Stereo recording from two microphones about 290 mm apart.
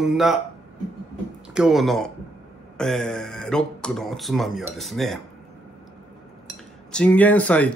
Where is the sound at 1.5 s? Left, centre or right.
Centre.